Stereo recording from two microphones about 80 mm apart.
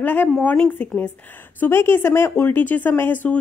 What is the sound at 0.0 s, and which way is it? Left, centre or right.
Speech, left.